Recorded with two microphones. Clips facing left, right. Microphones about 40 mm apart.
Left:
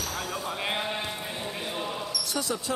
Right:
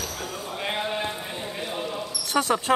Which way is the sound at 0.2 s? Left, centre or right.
Centre.